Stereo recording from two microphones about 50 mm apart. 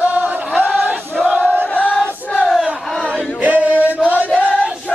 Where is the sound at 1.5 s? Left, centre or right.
Right.